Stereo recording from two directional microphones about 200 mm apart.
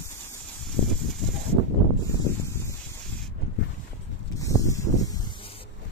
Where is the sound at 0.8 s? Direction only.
Centre (ahead or behind).